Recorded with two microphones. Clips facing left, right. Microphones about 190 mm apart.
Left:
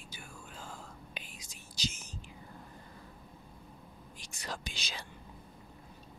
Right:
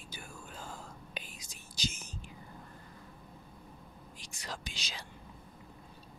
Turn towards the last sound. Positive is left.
turn(degrees=55)  # may be behind; listen again after turning